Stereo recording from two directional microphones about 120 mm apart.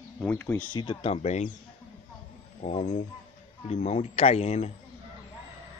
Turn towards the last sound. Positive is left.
turn(degrees=65)  # may be behind; listen again after turning